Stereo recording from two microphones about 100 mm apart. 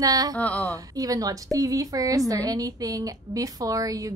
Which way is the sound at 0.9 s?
35° right (ahead or behind).